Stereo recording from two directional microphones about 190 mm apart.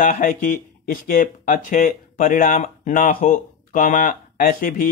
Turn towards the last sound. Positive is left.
turn(degrees=50)  # may be behind; listen again after turning